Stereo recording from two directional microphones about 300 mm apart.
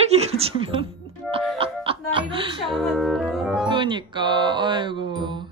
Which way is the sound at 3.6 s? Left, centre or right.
Centre.